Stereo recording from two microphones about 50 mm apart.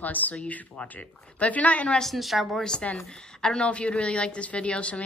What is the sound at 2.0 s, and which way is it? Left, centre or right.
Speech, centre.